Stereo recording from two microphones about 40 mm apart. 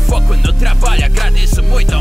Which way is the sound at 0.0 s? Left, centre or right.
Centre.